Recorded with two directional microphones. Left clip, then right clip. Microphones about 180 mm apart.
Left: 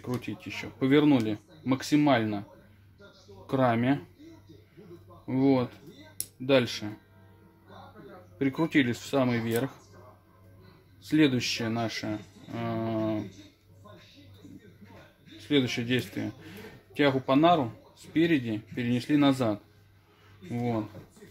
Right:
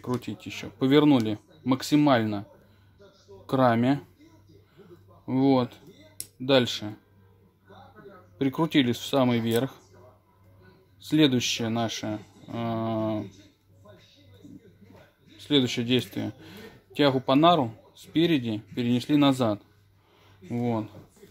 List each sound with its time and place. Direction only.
0.2 s speech: 45° right (ahead or behind)
3.4 s speech: 50° right (ahead or behind)
5.2 s speech: 45° right (ahead or behind)
8.4 s speech: 45° right (ahead or behind)
11.0 s speech: 45° right (ahead or behind)
15.4 s speech: 45° right (ahead or behind)